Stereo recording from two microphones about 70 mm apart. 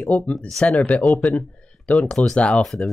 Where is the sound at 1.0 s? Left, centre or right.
Centre.